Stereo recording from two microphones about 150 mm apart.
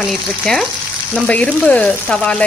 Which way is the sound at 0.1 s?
Centre (ahead or behind).